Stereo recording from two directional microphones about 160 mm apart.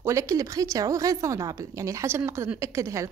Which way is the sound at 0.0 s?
20° right (ahead or behind).